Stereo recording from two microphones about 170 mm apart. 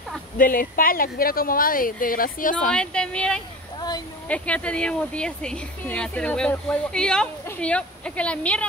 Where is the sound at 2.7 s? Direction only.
5° left (ahead or behind).